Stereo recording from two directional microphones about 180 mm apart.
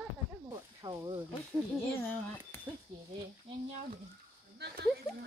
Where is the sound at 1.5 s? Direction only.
10° left (ahead or behind).